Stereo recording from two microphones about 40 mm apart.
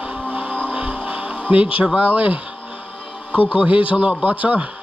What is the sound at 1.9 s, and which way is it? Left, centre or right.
Speech, right.